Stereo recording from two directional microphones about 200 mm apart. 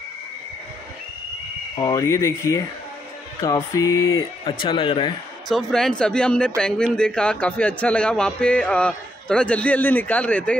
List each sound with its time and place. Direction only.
1.8 s a man's voice: 15° left (ahead or behind)
5.5 s speech: centre (ahead or behind)